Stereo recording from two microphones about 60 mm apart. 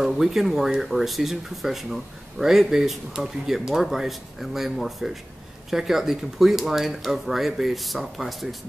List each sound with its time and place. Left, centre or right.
0.0 s speech: centre